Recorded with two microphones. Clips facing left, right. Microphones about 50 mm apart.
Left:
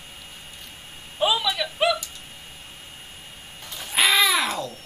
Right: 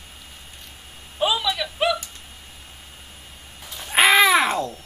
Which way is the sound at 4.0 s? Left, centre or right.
Right.